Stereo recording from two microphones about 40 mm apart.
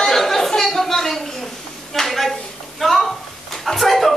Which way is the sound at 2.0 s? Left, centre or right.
Centre.